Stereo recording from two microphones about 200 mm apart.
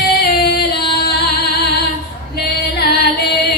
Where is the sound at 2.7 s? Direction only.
55° left (ahead or behind).